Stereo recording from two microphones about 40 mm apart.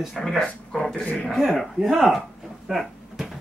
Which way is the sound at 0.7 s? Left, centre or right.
Centre.